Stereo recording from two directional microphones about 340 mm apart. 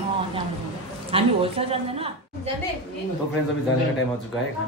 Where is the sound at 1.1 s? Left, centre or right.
Centre.